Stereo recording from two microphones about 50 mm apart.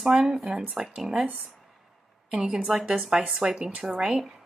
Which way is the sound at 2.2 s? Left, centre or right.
Centre.